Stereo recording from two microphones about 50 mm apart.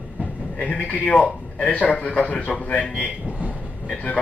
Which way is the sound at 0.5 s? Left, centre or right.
Left.